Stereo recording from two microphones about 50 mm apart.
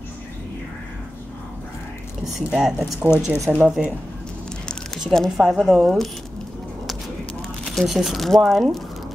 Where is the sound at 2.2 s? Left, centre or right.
Centre.